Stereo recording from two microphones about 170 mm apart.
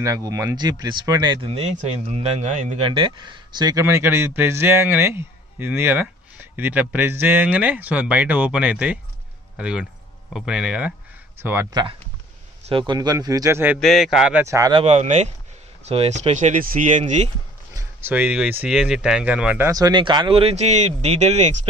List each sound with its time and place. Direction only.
0.0 s speech: 20° right (ahead or behind)
12.6 s speech: 30° right (ahead or behind); by 13.7 s 15° right (ahead or behind)
13.7 s a man's voice: centre (ahead or behind); by 14.7 s 15° right (ahead or behind)
14.7 s speech: 35° right (ahead or behind)
17.7 s speech: 10° right (ahead or behind); by 21.5 s 40° right (ahead or behind)